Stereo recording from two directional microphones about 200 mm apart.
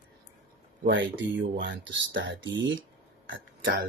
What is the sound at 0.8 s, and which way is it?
Speech, 65° right (ahead or behind).